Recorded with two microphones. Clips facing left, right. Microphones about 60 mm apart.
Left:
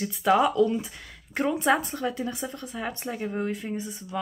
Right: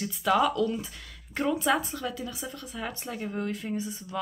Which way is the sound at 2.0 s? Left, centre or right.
Left.